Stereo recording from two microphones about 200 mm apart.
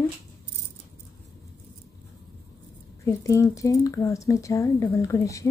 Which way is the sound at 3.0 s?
15° left (ahead or behind).